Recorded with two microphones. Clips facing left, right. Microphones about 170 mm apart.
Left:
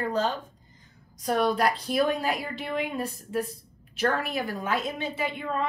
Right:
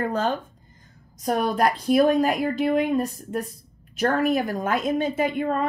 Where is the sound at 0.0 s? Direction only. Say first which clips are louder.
Right 3 dB; 55° right (ahead or behind).